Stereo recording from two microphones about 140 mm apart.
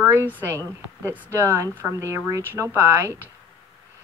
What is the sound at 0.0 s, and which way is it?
Speech, 15° right (ahead or behind).